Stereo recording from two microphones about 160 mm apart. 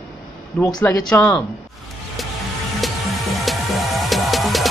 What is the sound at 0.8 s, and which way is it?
Speech, 15° left (ahead or behind).